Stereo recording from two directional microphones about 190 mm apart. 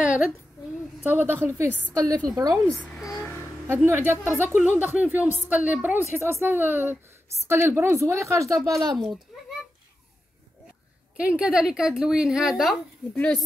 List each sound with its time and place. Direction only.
1.0 s a woman's voice: 10° right (ahead or behind)
1.7 s a woman's voice: 10° left (ahead or behind)
3.6 s a woman's voice: 15° right (ahead or behind)
8.9 s a child's voice: centre (ahead or behind)
11.1 s speech: 5° right (ahead or behind)